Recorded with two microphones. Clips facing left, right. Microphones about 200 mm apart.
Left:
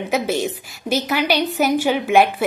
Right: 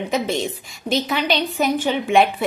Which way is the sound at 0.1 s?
5° left (ahead or behind).